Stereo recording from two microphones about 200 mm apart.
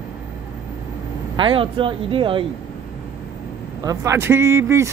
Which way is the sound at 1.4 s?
25° right (ahead or behind).